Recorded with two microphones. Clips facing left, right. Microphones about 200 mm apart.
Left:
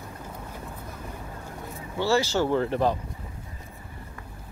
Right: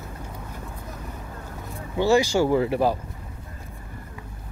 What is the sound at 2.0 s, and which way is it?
Speech, 15° right (ahead or behind).